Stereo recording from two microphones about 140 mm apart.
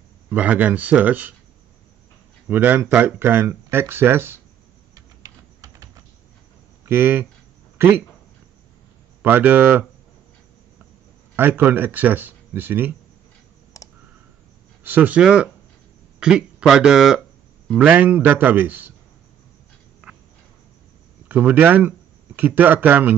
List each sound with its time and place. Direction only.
0.3 s speech: 10° right (ahead or behind)
2.4 s speech: 15° right (ahead or behind)
4.9 s typing: 25° right (ahead or behind)
6.9 s speech: 15° right (ahead or behind)
7.7 s a sound: 15° right (ahead or behind)
9.2 s speech: 10° right (ahead or behind)
11.3 s speech: 15° right (ahead or behind)
13.7 s clicking: 25° left (ahead or behind)
14.8 s speech: 10° right (ahead or behind)
21.3 s a man's voice: 10° right (ahead or behind)